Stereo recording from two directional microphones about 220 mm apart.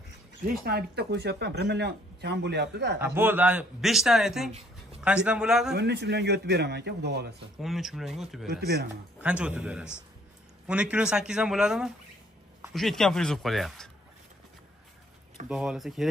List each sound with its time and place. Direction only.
0.5 s speech: 45° right (ahead or behind)
3.0 s a man's voice: 10° right (ahead or behind)
5.8 s speech: 50° right (ahead or behind)
7.6 s a man's voice: centre (ahead or behind)
8.5 s speech: 45° right (ahead or behind)
9.2 s a man's voice: 5° right (ahead or behind)
15.4 s a man's voice: 5° right (ahead or behind)